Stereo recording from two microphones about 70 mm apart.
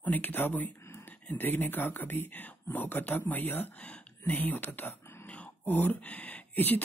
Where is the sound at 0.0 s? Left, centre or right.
Left.